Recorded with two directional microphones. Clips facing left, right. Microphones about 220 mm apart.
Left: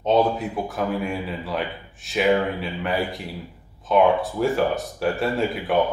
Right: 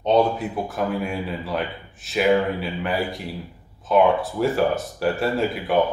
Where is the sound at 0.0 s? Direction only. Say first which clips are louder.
Right 1 dB; centre (ahead or behind).